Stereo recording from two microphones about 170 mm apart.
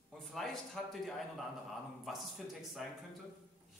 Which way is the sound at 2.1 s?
Centre (ahead or behind).